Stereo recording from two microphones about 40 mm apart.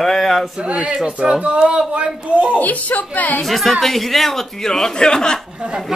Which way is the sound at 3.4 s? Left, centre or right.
Centre.